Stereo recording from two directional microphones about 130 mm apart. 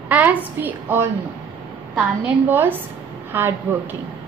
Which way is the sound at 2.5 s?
15° right (ahead or behind).